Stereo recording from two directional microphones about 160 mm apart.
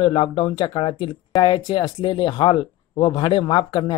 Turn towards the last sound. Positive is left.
turn(degrees=25)  # may be behind; listen again after turning